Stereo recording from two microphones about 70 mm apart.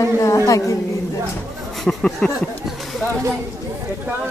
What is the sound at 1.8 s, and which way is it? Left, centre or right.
Speech, centre.